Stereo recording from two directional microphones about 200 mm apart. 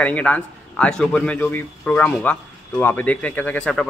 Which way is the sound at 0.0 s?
5° left (ahead or behind).